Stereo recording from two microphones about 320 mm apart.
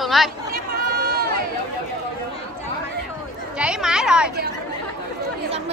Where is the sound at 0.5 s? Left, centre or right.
Right.